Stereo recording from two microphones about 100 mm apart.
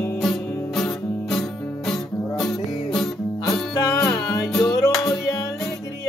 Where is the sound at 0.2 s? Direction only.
Centre (ahead or behind).